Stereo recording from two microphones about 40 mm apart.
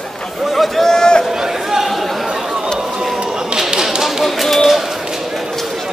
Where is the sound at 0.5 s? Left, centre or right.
Centre.